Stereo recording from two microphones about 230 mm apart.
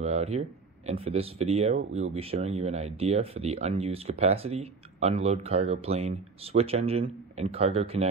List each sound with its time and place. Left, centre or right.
0.0 s speech: right
1.8 s speech: right
2.1 s speech: right